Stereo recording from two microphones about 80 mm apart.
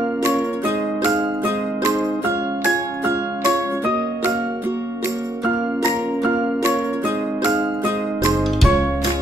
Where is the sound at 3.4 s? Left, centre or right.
Right.